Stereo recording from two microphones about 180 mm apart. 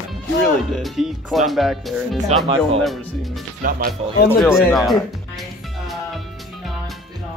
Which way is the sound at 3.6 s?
50° right (ahead or behind).